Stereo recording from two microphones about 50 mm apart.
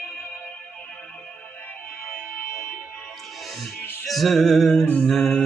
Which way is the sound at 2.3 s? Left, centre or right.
Left.